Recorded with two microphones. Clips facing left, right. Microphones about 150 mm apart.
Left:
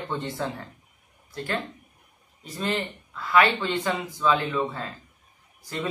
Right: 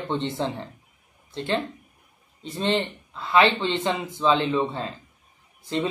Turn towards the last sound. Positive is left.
turn(degrees=-25)  # may be behind; listen again after turning